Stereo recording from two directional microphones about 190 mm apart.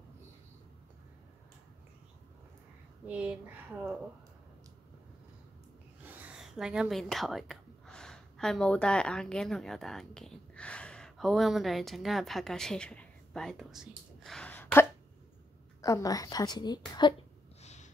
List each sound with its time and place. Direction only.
3.1 s speech: 5° right (ahead or behind)
6.0 s a woman's voice: 10° right (ahead or behind); by 17.1 s 20° left (ahead or behind)
17.6 s a sound: 35° left (ahead or behind)